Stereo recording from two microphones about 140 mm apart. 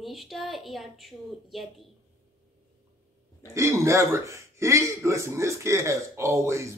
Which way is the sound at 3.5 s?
20° right (ahead or behind).